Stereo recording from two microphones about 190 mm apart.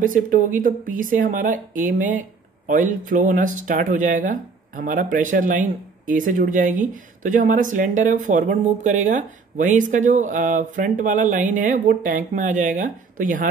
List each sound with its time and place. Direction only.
0.0 s speech: 45° right (ahead or behind)